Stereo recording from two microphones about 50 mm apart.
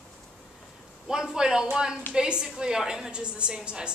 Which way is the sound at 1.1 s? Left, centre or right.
Centre.